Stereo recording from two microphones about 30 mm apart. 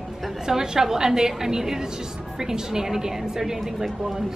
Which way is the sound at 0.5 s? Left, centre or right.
Centre.